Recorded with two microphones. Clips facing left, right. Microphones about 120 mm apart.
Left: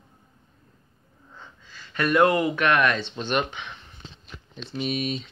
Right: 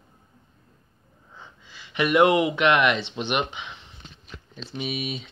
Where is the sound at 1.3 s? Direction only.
10° right (ahead or behind).